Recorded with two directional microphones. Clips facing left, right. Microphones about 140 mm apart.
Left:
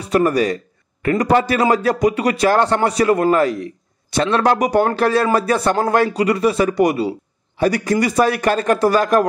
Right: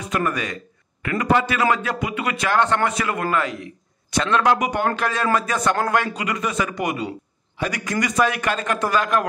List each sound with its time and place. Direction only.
0.0 s a man's voice: 35° left (ahead or behind)